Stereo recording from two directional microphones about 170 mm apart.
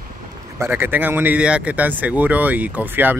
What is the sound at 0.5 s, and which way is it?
Speech, 15° right (ahead or behind).